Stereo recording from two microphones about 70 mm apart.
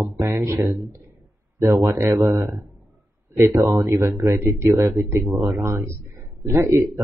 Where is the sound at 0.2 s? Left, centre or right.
Right.